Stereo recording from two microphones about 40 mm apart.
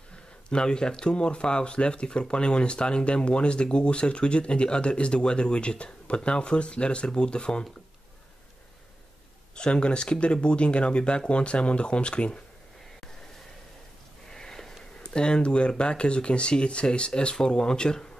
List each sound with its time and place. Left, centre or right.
0.1 s speech: left
9.6 s speech: left
14.3 s sniff: centre
15.0 s speech: left